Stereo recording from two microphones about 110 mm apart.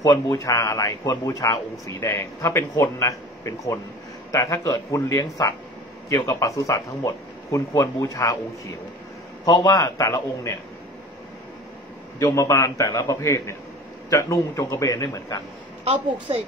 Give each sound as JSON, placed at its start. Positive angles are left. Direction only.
{"t": 0.0, "sound": "a man's voice", "side_deg": 30}
{"t": 12.2, "sound": "speech", "side_deg": 30}
{"t": 15.8, "sound": "a woman's voice", "side_deg": -60}